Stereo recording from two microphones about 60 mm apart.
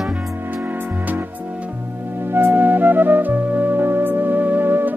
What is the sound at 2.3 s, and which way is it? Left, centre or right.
Music, right.